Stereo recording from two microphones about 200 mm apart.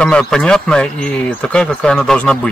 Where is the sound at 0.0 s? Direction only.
5° left (ahead or behind).